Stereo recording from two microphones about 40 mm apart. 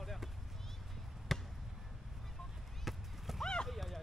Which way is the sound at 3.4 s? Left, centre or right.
Centre.